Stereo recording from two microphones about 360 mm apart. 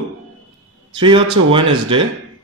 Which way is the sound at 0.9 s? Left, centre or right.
Centre.